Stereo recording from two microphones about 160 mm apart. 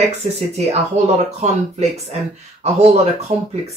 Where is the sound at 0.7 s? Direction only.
40° right (ahead or behind).